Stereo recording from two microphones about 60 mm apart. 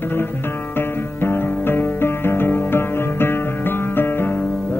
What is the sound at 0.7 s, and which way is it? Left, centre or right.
Music, left.